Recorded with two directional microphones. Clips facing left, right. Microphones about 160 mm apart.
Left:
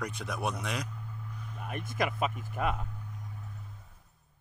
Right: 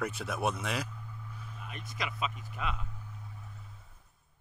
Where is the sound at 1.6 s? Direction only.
55° left (ahead or behind).